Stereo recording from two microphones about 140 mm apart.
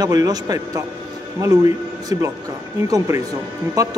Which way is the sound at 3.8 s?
25° right (ahead or behind).